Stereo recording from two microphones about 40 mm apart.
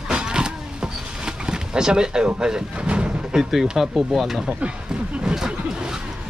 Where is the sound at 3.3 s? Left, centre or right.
Centre.